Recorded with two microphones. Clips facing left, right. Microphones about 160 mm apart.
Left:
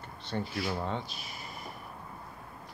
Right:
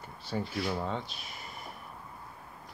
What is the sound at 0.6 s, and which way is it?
Speech, centre (ahead or behind).